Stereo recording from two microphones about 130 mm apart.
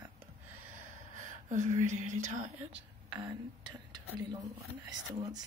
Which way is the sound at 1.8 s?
70° right (ahead or behind).